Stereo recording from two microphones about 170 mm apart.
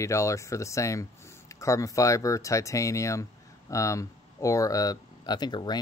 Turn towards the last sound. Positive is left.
turn(degrees=25)  # may be behind; listen again after turning